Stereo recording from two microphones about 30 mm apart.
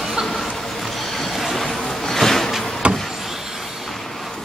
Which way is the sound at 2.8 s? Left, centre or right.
Right.